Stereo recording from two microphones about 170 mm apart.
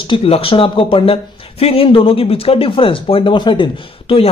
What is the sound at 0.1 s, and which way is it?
Speech, 35° left (ahead or behind).